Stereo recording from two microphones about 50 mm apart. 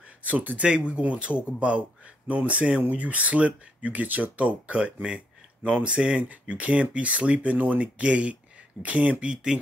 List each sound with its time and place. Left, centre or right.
0.2 s speech: right
0.7 s speech: right
9.3 s speech: centre